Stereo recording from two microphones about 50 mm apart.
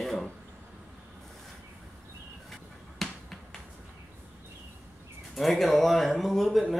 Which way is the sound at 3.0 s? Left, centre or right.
Centre.